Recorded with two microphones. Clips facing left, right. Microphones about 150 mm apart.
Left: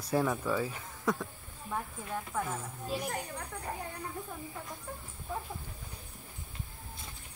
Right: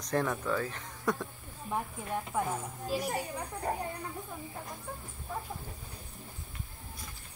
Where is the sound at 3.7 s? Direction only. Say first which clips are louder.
Right 6 dB; 40° right (ahead or behind).